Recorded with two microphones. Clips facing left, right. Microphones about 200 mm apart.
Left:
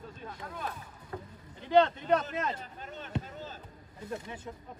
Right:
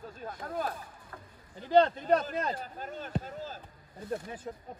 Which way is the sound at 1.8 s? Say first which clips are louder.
Right 1 dB; 40° right (ahead or behind).